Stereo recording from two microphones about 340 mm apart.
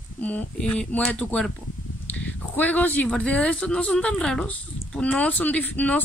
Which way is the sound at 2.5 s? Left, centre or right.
Centre.